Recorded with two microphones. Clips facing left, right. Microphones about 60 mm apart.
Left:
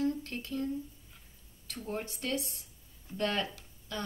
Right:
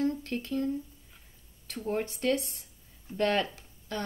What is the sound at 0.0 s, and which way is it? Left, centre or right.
Speech, right.